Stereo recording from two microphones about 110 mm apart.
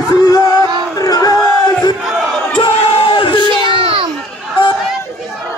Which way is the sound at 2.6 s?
50° left (ahead or behind).